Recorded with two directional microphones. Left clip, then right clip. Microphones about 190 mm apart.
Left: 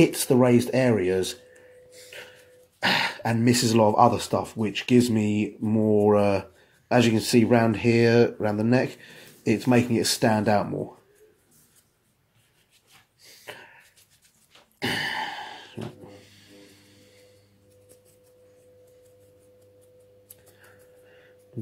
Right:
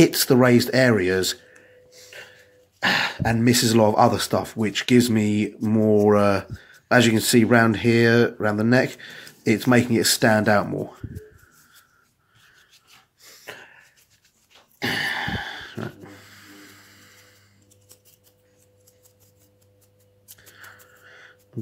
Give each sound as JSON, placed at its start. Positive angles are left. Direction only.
{"t": 0.0, "sound": "speech", "side_deg": -20}
{"t": 1.9, "sound": "gasp", "side_deg": 0}
{"t": 2.8, "sound": "speech", "side_deg": 0}
{"t": 13.5, "sound": "a sound", "side_deg": -5}
{"t": 14.8, "sound": "throat clearing", "side_deg": -5}